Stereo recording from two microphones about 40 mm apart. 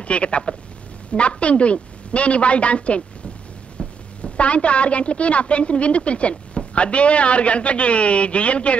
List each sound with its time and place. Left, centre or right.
0.0 s a woman's voice: left
4.2 s a woman's voice: left